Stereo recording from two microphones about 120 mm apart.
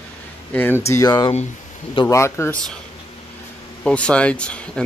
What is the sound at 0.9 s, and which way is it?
Speech, 30° left (ahead or behind).